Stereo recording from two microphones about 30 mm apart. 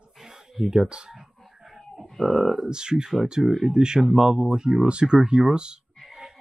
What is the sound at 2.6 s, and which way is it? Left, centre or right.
Speech, right.